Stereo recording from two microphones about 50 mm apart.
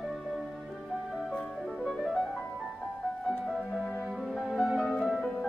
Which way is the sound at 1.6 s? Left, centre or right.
Centre.